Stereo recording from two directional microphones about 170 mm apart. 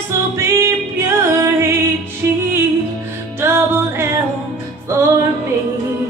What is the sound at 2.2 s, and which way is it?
Music, 15° right (ahead or behind).